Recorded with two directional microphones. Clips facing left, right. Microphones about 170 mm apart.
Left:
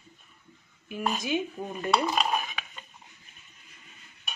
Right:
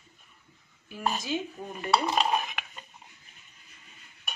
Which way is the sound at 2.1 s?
20° right (ahead or behind).